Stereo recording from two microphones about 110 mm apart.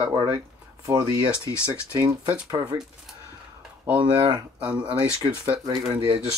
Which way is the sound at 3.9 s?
50° right (ahead or behind).